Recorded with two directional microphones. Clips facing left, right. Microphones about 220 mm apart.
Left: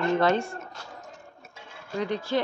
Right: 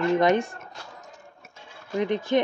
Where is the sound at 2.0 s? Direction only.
20° right (ahead or behind).